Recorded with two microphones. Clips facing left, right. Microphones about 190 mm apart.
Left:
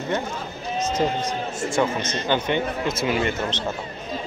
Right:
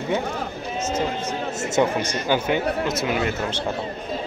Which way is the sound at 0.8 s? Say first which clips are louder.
Left 2 dB; 35° left (ahead or behind).